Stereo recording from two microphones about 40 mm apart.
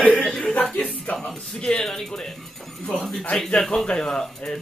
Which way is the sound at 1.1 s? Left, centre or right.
Centre.